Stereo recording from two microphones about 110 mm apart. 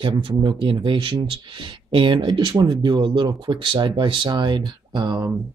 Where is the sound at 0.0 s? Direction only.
50° right (ahead or behind).